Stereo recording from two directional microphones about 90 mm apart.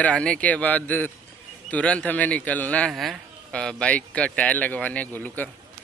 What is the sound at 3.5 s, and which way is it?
A man's voice, 10° left (ahead or behind).